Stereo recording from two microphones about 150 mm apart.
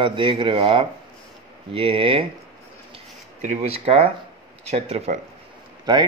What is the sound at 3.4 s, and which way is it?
Speech, 45° right (ahead or behind).